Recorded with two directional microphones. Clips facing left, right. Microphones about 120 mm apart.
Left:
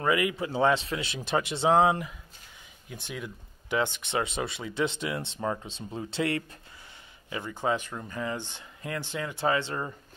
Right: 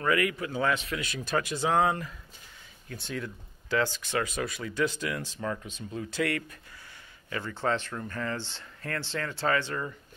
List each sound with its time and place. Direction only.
0.0 s speech: 20° left (ahead or behind)